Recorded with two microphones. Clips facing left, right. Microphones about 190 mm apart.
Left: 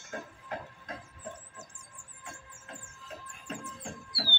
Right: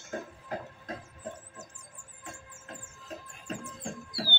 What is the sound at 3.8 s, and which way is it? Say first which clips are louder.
Music: right 3 dB; 45° right (ahead or behind).